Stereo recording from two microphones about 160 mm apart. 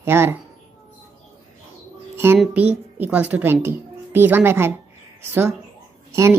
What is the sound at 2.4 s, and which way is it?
A woman's voice, 10° right (ahead or behind).